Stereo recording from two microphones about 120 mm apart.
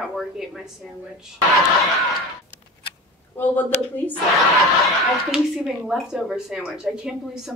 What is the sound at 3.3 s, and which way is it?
Speech, 15° left (ahead or behind).